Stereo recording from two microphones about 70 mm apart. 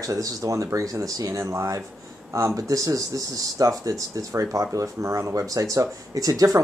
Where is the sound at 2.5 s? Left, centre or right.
Right.